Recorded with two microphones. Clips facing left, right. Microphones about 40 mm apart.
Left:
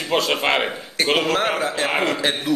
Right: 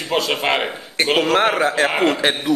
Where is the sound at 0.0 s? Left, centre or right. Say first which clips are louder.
Even; centre.